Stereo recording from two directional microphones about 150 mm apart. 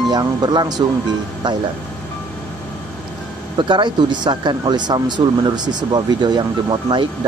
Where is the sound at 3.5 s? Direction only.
30° right (ahead or behind).